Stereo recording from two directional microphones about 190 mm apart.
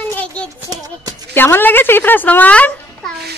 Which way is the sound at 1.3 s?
10° left (ahead or behind).